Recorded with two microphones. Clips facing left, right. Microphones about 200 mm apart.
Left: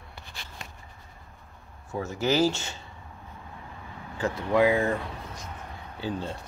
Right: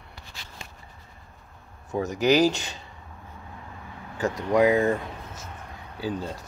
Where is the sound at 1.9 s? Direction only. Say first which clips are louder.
Right 5 dB; 20° right (ahead or behind).